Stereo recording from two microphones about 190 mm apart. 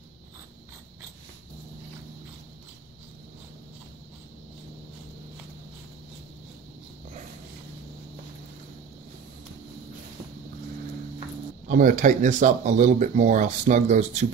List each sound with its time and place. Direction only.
11.6 s speech: 45° right (ahead or behind)